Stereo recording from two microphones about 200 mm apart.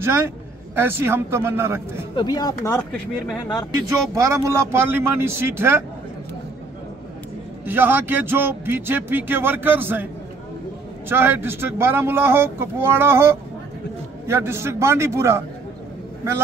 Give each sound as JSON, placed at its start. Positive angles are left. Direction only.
{"t": 0.0, "sound": "a man's voice", "side_deg": -10}
{"t": 2.1, "sound": "speech", "side_deg": 20}
{"t": 4.1, "sound": "speech", "side_deg": -15}
{"t": 7.6, "sound": "speech", "side_deg": -10}
{"t": 11.1, "sound": "speech", "side_deg": -10}